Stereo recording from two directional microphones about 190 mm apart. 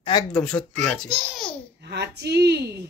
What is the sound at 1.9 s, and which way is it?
Speech, 60° right (ahead or behind).